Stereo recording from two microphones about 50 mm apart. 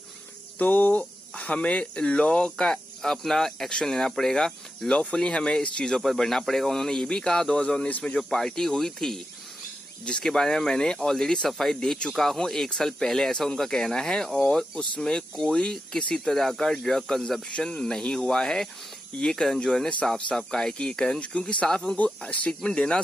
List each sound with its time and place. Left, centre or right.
0.6 s speech: left; by 4.6 s centre
4.8 s speech: centre
6.0 s speech: centre
10.2 s speech: centre
17.5 s speech: centre
21.4 s speech: left
21.9 s speech: left
22.5 s speech: centre